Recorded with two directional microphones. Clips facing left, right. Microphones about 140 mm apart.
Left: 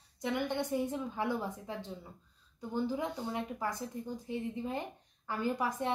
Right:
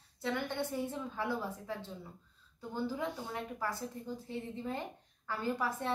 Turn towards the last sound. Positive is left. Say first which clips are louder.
# left 2 dB
turn(degrees=15)  # may be behind; listen again after turning